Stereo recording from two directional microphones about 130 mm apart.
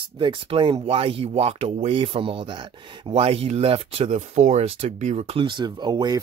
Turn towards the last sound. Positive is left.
turn(degrees=-30)  # may be behind; listen again after turning